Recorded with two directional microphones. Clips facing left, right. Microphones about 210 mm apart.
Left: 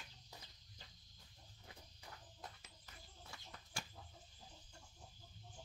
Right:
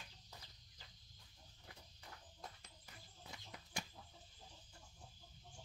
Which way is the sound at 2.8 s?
15° right (ahead or behind).